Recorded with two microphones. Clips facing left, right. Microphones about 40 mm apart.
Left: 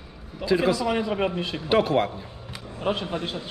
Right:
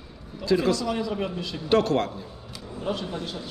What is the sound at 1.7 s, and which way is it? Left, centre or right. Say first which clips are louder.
Speech: left 1 dB; centre.